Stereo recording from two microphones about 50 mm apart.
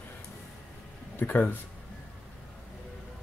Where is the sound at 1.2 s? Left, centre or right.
Left.